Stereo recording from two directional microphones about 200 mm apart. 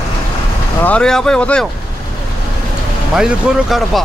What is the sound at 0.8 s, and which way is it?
Speech, 5° left (ahead or behind).